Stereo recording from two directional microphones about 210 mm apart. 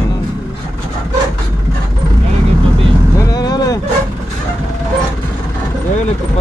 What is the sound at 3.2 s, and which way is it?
Vehicle, 20° left (ahead or behind).